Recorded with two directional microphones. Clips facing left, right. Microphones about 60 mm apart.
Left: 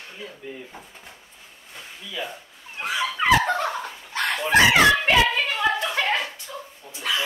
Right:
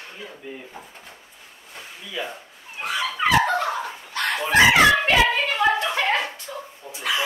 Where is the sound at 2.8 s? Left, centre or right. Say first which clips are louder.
Right 1 dB; centre.